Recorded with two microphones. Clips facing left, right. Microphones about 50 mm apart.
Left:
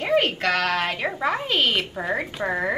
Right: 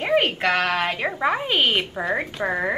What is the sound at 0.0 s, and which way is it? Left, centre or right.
A woman's voice, centre.